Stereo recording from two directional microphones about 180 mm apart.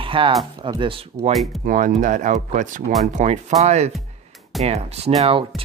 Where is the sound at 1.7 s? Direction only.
45° right (ahead or behind).